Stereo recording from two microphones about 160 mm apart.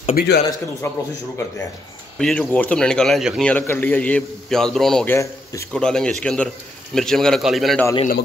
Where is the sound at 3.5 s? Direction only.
10° left (ahead or behind).